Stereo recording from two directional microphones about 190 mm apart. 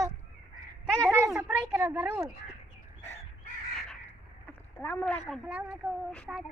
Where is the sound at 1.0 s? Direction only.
15° right (ahead or behind).